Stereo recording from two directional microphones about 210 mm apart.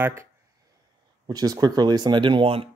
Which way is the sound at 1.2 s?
20° right (ahead or behind).